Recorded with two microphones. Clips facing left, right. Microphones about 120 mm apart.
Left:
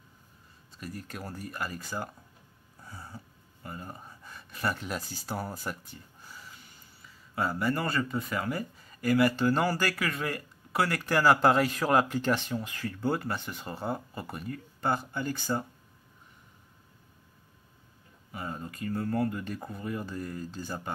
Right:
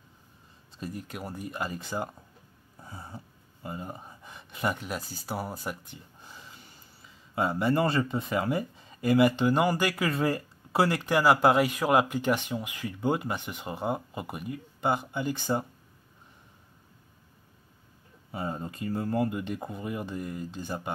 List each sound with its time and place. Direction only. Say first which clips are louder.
0.7 s speech: right 3 dB; 25° right (ahead or behind)
2.8 s a sound: right 2 dB; 25° right (ahead or behind)
4.8 s speech: right 1 dB; 5° right (ahead or behind)
18.3 s speech: right 4 dB; 25° right (ahead or behind)